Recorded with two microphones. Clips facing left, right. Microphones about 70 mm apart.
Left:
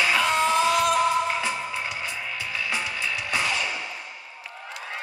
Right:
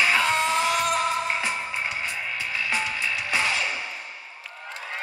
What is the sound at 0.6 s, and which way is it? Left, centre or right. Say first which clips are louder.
Music: left 3 dB; right.